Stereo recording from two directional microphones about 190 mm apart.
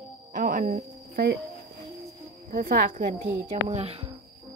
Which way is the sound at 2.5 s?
45° right (ahead or behind).